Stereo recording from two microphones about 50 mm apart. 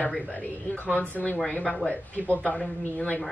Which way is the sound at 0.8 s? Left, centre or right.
Left.